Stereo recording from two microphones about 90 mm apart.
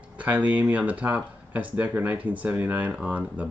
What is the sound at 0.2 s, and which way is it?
Speech, 15° right (ahead or behind).